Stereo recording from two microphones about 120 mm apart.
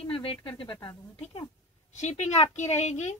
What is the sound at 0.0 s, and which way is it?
Speech, 50° left (ahead or behind).